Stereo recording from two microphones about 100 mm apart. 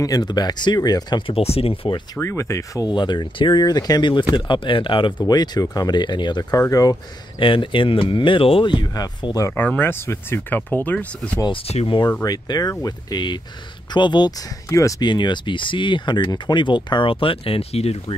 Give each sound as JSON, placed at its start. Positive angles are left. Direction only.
{"t": 0.0, "sound": "speech", "side_deg": 40}
{"t": 1.2, "sound": "speech", "side_deg": 80}
{"t": 2.1, "sound": "speech", "side_deg": 30}
{"t": 2.9, "sound": "speech", "side_deg": 50}
{"t": 4.1, "sound": "speech", "side_deg": 50}
{"t": 5.2, "sound": "speech", "side_deg": 45}
{"t": 6.7, "sound": "speech", "side_deg": 40}
{"t": 7.3, "sound": "speech", "side_deg": 60}
{"t": 8.8, "sound": "speech", "side_deg": 40}
{"t": 9.5, "sound": "speech", "side_deg": 20}
{"t": 11.5, "sound": "speech", "side_deg": 75}
{"t": 12.3, "sound": "speech", "side_deg": 40}
{"t": 14.7, "sound": "speech", "side_deg": 35}
{"t": 15.0, "sound": "speech", "side_deg": 50}